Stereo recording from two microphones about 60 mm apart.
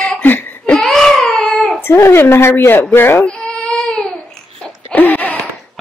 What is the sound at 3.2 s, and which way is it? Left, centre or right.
Baby cry, centre.